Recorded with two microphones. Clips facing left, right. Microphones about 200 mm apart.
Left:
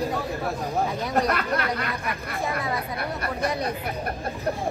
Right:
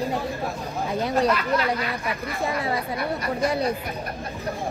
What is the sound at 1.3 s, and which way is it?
Speech, 60° left (ahead or behind).